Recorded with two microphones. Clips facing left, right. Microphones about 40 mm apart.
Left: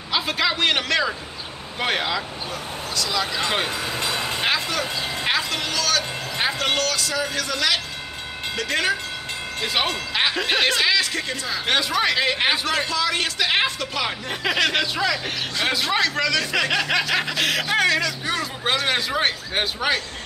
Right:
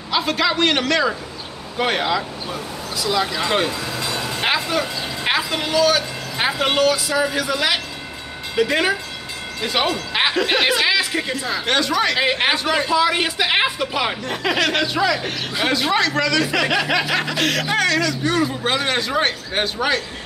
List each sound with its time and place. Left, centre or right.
0.1 s speech: centre
3.0 s speech: centre
3.4 s speech: centre
3.7 s vehicle: left
4.5 s speech: centre
9.6 s speech: centre
11.6 s speech: centre
12.2 s speech: centre
14.2 s speech: centre